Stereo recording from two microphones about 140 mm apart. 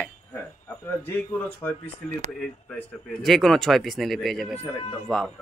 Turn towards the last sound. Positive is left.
turn(degrees=10)  # may be behind; listen again after turning